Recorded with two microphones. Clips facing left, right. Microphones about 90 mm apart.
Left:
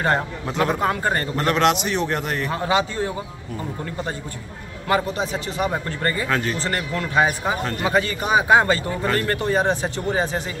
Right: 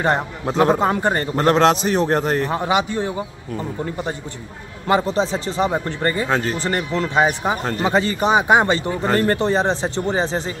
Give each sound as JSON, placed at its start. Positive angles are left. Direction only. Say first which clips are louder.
{"t": 0.5, "sound": "a man's voice", "louder": "right 6 dB", "side_deg": -30}
{"t": 0.8, "sound": "speech", "louder": "right 3 dB", "side_deg": -20}
{"t": 1.3, "sound": "a man's voice", "louder": "right 5 dB", "side_deg": -35}
{"t": 2.5, "sound": "a man's voice", "louder": "right 2 dB", "side_deg": -20}
{"t": 4.8, "sound": "speech", "louder": "right 4 dB", "side_deg": -25}